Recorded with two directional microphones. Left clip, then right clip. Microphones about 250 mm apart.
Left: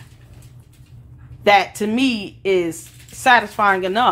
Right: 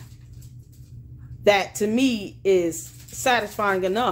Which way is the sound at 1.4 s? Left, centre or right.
Centre.